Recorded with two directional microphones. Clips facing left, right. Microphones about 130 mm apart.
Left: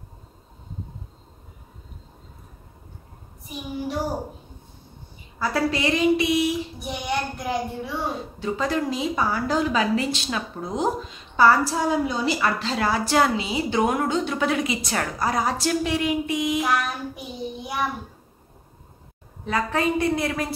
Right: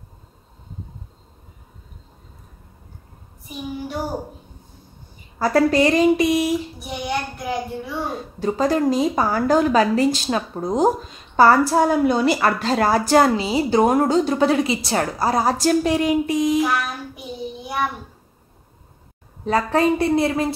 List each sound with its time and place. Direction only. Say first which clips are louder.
5.4 s a woman's voice: right 7 dB; 45° right (ahead or behind)
6.8 s child singing: right 1 dB; centre (ahead or behind)
8.4 s a woman's voice: right 6 dB; 40° right (ahead or behind)
16.5 s child singing: right 3 dB; centre (ahead or behind)
19.4 s a woman's voice: right 5 dB; 35° right (ahead or behind)